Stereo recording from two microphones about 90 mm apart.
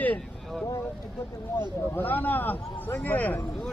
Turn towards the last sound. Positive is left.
turn(degrees=20)  # may be behind; listen again after turning